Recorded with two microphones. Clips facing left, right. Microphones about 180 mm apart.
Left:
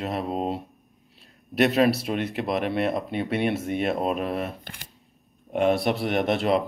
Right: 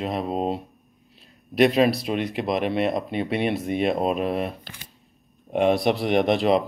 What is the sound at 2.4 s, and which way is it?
Speech, 15° right (ahead or behind).